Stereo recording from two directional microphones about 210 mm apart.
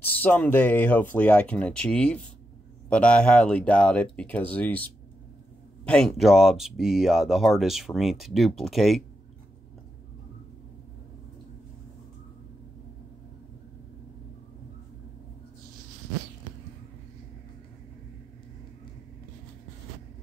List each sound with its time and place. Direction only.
0.0 s speech: 10° left (ahead or behind)